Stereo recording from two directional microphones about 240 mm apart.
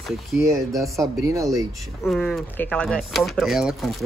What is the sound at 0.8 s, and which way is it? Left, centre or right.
Speech, centre.